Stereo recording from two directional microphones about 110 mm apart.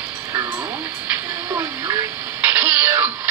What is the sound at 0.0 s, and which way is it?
Music, 15° right (ahead or behind).